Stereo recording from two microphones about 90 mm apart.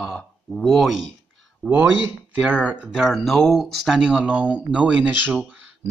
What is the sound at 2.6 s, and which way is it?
Speech, 15° right (ahead or behind).